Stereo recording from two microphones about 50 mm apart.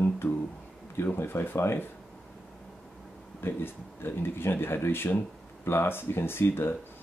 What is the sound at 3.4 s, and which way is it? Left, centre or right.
Speech, left.